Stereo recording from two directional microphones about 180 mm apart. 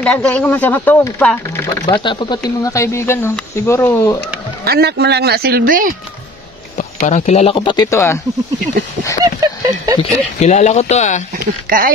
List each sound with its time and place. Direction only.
0.0 s speech: 5° left (ahead or behind)
2.0 s speech: 25° left (ahead or behind)
4.6 s speech: 65° right (ahead or behind)
6.8 s speech: 40° left (ahead or behind); by 8.2 s 15° left (ahead or behind)
9.2 s a sound: 20° right (ahead or behind)
10.4 s speech: 40° left (ahead or behind)
11.7 s speech: 50° right (ahead or behind)